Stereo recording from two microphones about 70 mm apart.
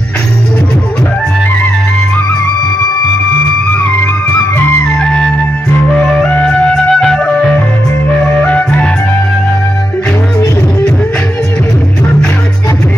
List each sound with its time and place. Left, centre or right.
5.0 s music: centre
5.9 s music: centre